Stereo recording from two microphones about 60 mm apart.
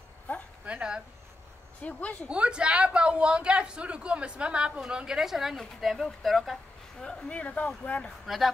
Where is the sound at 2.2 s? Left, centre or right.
Centre.